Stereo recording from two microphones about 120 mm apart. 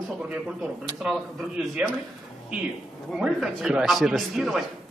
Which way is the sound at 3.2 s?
5° right (ahead or behind).